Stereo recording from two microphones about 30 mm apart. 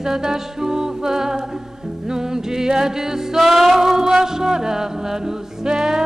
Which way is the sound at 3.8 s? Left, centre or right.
Centre.